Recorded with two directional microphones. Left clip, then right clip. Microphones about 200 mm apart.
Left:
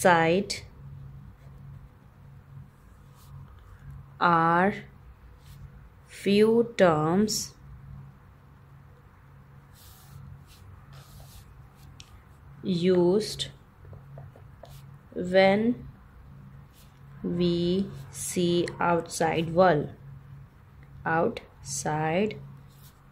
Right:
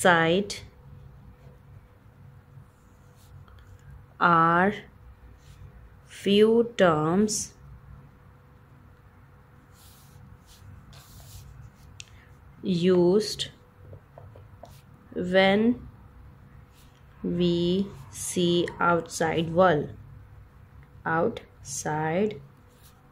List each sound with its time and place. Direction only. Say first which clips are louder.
0.0 s speech: even; 5° right (ahead or behind)
4.2 s speech: right 2 dB; 5° right (ahead or behind)
6.0 s speech: right 2 dB; 5° right (ahead or behind)
12.6 s speech: right 1 dB; 10° right (ahead or behind)
15.1 s speech: even; 10° right (ahead or behind)
17.3 s speech: right 1 dB; 5° right (ahead or behind)
21.0 s speech: even; centre (ahead or behind)